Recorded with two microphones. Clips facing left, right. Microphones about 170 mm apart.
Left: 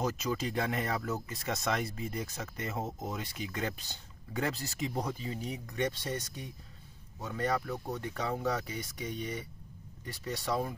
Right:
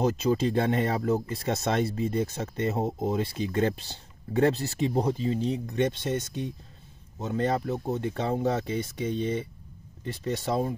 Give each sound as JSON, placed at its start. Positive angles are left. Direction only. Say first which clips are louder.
{"t": 0.0, "sound": "speech", "louder": "right 9 dB", "side_deg": -30}